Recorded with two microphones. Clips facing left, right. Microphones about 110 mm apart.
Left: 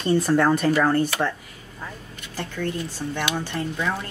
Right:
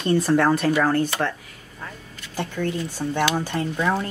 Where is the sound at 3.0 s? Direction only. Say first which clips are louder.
Right 6 dB; 25° right (ahead or behind).